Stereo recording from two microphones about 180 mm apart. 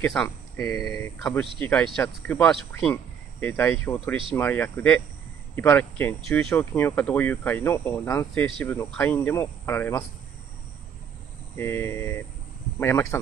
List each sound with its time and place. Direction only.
0.0 s speech: 10° left (ahead or behind)
11.5 s speech: 15° left (ahead or behind)